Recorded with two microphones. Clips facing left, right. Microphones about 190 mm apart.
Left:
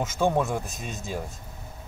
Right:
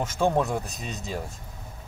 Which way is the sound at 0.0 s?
Centre (ahead or behind).